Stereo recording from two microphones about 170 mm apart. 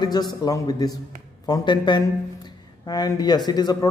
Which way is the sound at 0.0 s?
25° left (ahead or behind).